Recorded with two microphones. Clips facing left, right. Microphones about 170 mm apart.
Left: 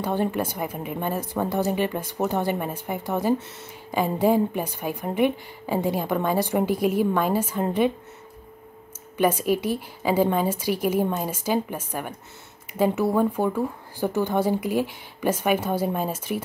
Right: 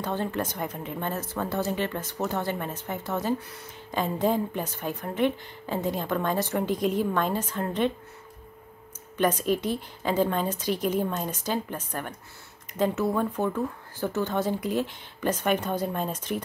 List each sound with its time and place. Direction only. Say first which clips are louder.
0.0 s a woman's voice: left 4 dB; 15° left (ahead or behind)
9.1 s a woman's voice: left 3 dB; 10° left (ahead or behind)